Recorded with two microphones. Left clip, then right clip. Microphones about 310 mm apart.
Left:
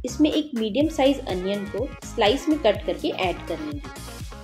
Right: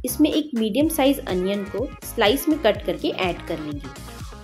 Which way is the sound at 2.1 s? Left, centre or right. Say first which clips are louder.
Right 1 dB; centre.